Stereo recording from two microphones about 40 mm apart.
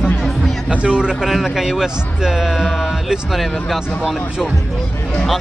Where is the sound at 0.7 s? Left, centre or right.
Right.